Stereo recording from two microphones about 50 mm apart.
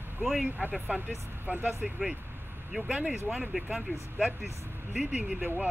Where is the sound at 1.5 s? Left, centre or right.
Right.